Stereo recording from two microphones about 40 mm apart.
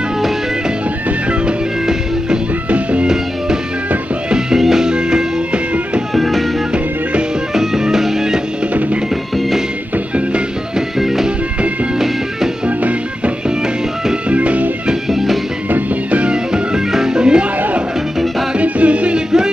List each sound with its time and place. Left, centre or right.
2.7 s music: right
4.6 s music: centre
6.1 s music: centre
7.5 s music: centre
11.0 s music: centre
12.6 s music: right
14.3 s music: right
15.0 s music: centre
15.7 s music: right
18.6 s music: right
19.1 s music: centre